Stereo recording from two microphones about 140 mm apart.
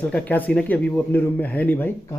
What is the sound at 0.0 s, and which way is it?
Speech, 10° left (ahead or behind).